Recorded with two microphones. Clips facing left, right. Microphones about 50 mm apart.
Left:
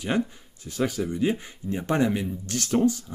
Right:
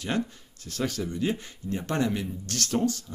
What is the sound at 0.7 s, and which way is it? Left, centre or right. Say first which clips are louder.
A man's voice: left 4 dB; centre.